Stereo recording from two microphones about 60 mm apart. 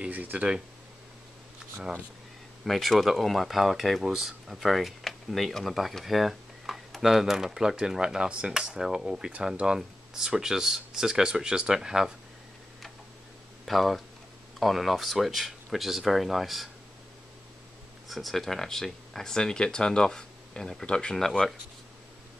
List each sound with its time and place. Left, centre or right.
0.0 s speech: right
2.6 s speech: centre
13.7 s speech: centre
18.0 s speech: centre